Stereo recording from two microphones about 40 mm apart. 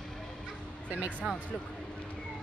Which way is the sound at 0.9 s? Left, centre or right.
Right.